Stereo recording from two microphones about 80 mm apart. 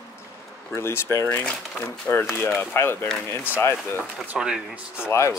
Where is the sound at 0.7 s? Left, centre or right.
Left.